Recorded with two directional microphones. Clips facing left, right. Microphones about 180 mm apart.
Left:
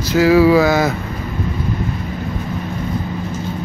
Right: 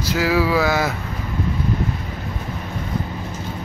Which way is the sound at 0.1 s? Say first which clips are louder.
Left 8 dB; 5° right (ahead or behind).